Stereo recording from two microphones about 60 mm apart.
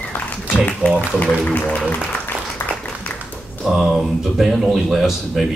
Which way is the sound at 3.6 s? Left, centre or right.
Centre.